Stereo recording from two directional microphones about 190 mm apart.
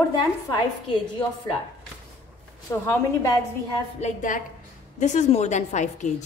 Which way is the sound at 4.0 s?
40° left (ahead or behind).